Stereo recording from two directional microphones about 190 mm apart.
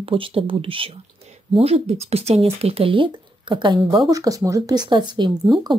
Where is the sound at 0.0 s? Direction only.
30° right (ahead or behind).